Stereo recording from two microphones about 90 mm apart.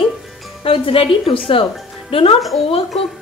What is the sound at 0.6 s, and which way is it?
A woman's voice, 85° left.